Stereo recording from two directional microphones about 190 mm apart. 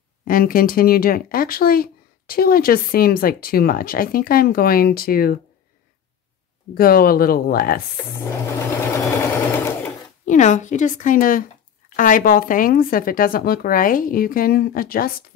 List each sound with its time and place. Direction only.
0.2 s speech: 50° left (ahead or behind)
6.7 s speech: 50° left (ahead or behind)
9.0 s sewing machine: 10° left (ahead or behind)
10.2 s speech: 40° left (ahead or behind)